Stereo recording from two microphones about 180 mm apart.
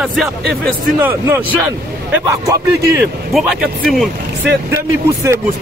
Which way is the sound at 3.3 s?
Centre (ahead or behind).